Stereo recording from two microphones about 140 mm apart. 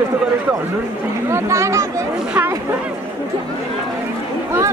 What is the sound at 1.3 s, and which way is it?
Speech, 20° right (ahead or behind).